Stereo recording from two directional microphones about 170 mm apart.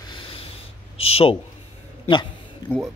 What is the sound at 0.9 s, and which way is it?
Speech, 35° left (ahead or behind).